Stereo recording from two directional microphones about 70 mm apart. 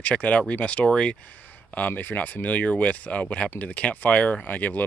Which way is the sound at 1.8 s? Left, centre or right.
Left.